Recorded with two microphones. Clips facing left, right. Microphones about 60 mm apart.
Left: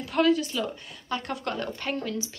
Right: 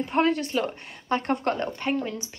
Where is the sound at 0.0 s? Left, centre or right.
Right.